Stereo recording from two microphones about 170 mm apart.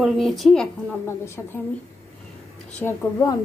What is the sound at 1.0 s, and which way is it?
Speech, 15° left (ahead or behind).